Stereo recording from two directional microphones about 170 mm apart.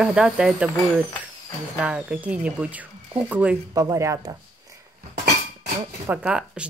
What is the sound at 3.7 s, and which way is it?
Speech, 20° right (ahead or behind).